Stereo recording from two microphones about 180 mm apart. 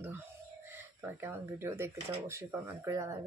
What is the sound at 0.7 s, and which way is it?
Speech, 10° right (ahead or behind).